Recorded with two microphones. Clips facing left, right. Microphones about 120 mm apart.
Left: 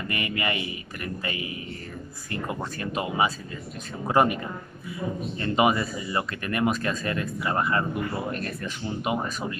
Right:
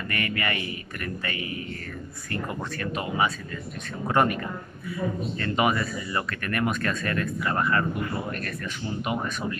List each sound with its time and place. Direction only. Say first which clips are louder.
0.1 s a man's voice: even; 20° left (ahead or behind)
5.4 s a man's voice: left 2 dB; 20° left (ahead or behind)